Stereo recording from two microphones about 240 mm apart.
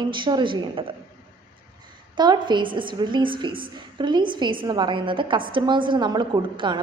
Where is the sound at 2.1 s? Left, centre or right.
Centre.